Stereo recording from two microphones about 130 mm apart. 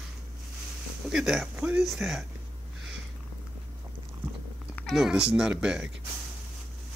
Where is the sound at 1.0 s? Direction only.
5° right (ahead or behind).